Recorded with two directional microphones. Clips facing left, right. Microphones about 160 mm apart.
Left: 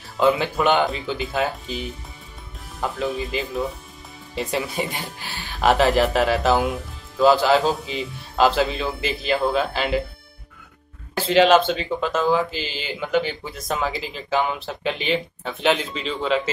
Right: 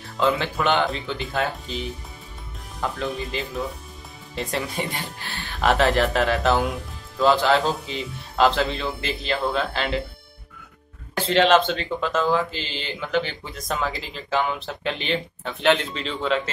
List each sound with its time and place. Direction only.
0.2 s speech: 15° left (ahead or behind)
2.8 s speech: 5° left (ahead or behind)
11.1 s speech: 5° left (ahead or behind)